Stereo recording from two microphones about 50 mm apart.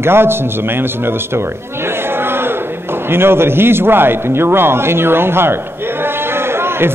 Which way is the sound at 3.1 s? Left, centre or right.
Right.